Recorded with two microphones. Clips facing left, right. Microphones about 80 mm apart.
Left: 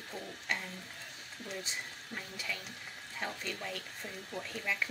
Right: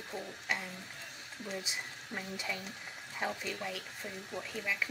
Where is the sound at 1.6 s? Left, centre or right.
Centre.